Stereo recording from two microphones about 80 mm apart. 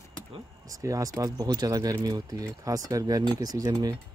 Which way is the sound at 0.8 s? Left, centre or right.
Right.